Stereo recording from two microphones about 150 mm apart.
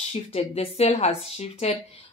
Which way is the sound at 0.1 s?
45° left (ahead or behind).